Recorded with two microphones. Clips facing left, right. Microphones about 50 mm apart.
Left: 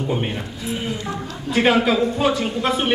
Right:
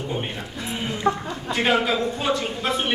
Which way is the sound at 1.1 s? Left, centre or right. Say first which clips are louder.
Right 6 dB; right.